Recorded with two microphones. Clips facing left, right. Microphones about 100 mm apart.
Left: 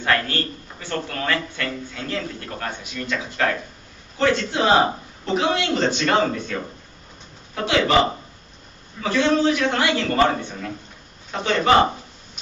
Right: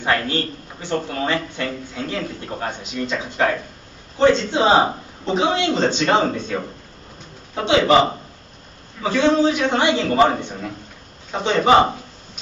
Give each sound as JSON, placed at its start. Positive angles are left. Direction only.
{"t": 0.0, "sound": "a man's voice", "side_deg": -20}